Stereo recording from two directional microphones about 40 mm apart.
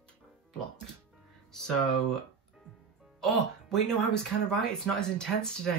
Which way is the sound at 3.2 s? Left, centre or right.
Centre.